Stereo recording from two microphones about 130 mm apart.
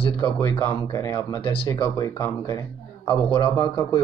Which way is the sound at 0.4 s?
20° left (ahead or behind).